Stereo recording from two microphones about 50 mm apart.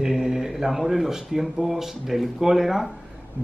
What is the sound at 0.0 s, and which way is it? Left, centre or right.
Speech, centre.